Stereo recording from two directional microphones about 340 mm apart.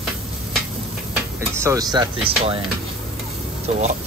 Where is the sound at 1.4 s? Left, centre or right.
Centre.